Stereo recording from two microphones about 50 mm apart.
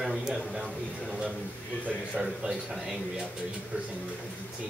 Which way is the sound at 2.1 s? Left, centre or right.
Centre.